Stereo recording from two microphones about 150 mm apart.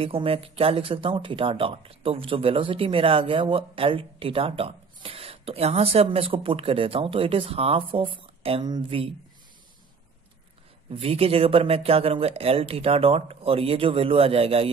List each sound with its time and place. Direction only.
0.0 s speech: 40° right (ahead or behind)
10.9 s speech: 40° right (ahead or behind)